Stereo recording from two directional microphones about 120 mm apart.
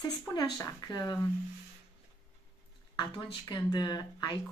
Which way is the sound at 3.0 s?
35° left (ahead or behind).